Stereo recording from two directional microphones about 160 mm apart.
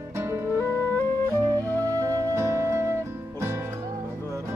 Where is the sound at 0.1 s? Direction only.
15° right (ahead or behind).